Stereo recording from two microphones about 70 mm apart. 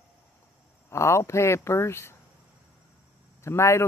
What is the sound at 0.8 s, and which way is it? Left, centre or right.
Speech, left.